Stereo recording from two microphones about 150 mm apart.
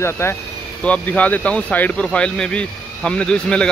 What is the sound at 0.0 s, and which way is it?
Speech, 15° left (ahead or behind).